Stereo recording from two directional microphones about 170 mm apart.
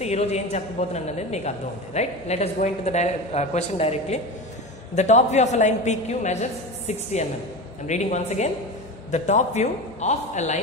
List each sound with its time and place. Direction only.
0.0 s a man's voice: 40° left (ahead or behind)